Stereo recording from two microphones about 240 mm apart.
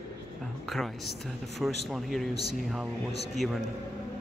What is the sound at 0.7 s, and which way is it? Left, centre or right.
Speech, centre.